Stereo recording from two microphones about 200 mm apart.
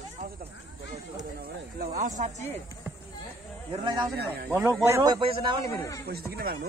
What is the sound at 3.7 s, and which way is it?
Speech, 25° right (ahead or behind).